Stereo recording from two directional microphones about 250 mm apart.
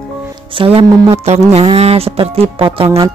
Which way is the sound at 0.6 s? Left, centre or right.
Right.